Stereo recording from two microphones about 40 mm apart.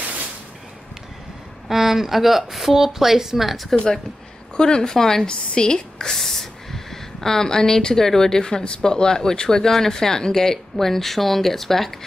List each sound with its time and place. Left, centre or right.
1.7 s speech: centre
3.7 s a woman's voice: centre
6.1 s speech: centre